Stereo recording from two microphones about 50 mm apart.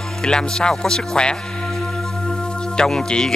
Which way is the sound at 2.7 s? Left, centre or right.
Centre.